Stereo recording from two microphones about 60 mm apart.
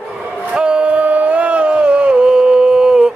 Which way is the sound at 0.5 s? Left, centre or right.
Centre.